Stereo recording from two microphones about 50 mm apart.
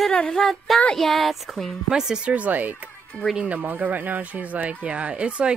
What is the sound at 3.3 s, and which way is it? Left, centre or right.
Speech, right.